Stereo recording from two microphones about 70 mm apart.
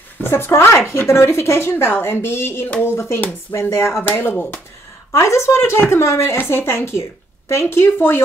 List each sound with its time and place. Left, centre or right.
0.2 s speech: left
5.1 s speech: left
7.6 s speech: left